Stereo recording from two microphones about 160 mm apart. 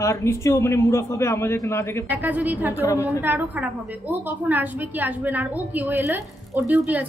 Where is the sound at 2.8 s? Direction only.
15° left (ahead or behind).